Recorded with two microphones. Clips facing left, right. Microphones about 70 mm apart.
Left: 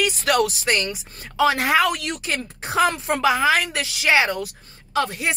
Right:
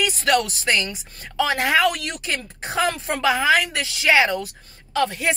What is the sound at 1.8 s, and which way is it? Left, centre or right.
A woman's voice, left.